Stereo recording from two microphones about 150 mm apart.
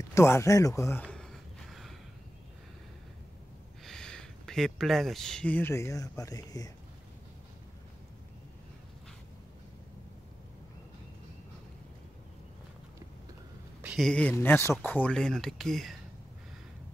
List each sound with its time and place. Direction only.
0.1 s a sound: 20° left (ahead or behind); by 2.0 s centre (ahead or behind)
3.8 s speech: 5° left (ahead or behind); by 6.7 s 25° left (ahead or behind)
13.8 s speech: centre (ahead or behind)
14.3 s speech: 15° left (ahead or behind)